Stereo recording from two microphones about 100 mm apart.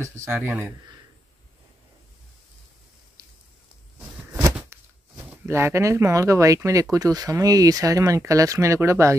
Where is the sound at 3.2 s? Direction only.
30° right (ahead or behind).